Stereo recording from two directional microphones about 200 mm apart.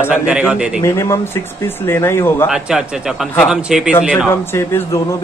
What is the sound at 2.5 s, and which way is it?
A man's voice, 5° right (ahead or behind).